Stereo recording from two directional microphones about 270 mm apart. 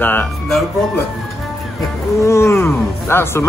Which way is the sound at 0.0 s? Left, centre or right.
Centre.